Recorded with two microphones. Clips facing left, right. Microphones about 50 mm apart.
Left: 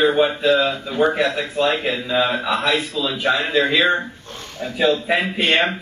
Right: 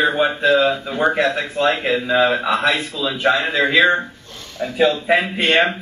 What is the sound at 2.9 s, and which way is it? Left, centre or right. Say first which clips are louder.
Speech: right 2 dB; centre.